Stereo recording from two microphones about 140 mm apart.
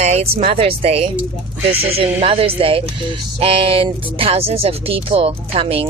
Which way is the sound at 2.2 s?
40° right (ahead or behind).